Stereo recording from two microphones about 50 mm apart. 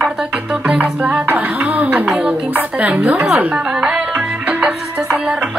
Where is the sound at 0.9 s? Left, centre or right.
Right.